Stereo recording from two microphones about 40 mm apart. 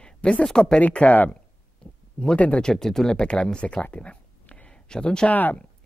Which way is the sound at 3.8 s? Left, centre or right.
Left.